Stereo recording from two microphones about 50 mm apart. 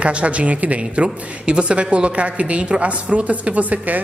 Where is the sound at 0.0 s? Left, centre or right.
Right.